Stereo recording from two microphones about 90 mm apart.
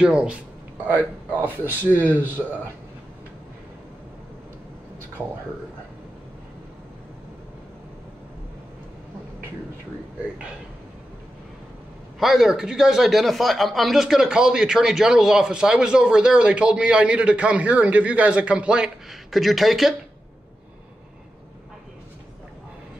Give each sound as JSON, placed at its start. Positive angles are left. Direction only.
{"t": 0.0, "sound": "a man's voice", "side_deg": -10}
{"t": 1.6, "sound": "speech", "side_deg": 20}
{"t": 12.2, "sound": "speech", "side_deg": -5}